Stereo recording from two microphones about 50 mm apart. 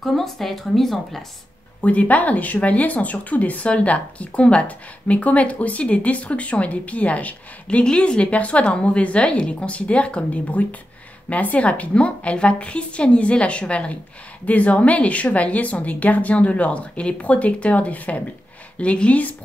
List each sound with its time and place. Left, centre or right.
0.0 s speech: centre
1.8 s speech: left
7.8 s speech: centre